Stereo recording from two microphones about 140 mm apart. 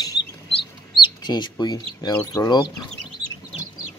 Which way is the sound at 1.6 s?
30° left (ahead or behind).